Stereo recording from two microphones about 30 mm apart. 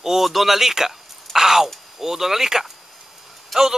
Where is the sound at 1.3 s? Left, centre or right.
Centre.